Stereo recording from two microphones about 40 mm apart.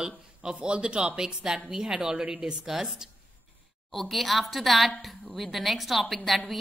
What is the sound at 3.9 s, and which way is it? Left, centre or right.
A woman's voice, centre.